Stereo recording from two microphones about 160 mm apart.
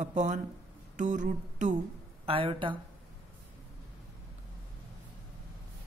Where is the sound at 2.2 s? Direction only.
35° right (ahead or behind).